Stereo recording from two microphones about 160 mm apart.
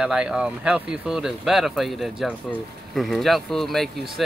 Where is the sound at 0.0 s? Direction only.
5° right (ahead or behind).